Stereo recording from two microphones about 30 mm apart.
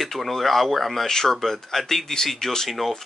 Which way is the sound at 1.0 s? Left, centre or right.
Centre.